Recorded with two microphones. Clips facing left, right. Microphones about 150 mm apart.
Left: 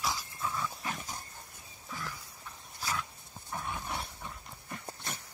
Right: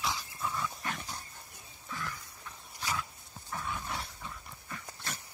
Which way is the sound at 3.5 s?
20° left (ahead or behind).